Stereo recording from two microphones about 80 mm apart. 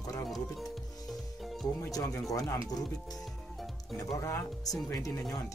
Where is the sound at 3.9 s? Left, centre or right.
Left.